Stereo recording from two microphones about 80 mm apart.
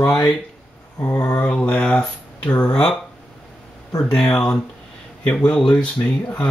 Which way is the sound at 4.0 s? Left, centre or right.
Centre.